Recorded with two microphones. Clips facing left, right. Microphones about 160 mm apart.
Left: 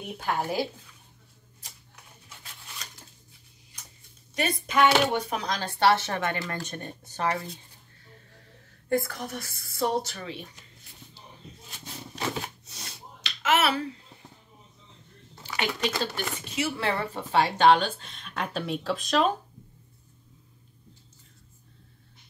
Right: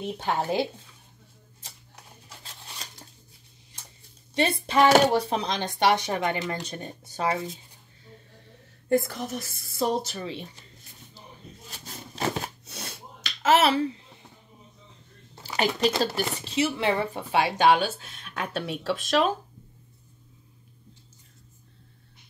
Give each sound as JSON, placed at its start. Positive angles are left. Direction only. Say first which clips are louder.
{"t": 0.0, "sound": "speech", "louder": "right 2 dB", "side_deg": -25}
{"t": 4.4, "sound": "speech", "louder": "right 2 dB", "side_deg": -30}
{"t": 8.8, "sound": "speech", "louder": "right 3 dB", "side_deg": -25}
{"t": 11.8, "sound": "shuffling cards", "louder": "right 3 dB", "side_deg": -55}
{"t": 13.4, "sound": "finger snapping", "louder": "right 4 dB", "side_deg": -30}
{"t": 15.4, "sound": "a sound", "louder": "right 5 dB", "side_deg": -35}
{"t": 16.0, "sound": "speech", "louder": "right 5 dB", "side_deg": -35}
{"t": 16.8, "sound": "a woman's voice", "louder": "right 3 dB", "side_deg": -15}